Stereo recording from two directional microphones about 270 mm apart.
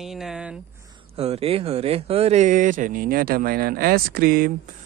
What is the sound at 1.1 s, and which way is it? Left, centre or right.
Speech, right.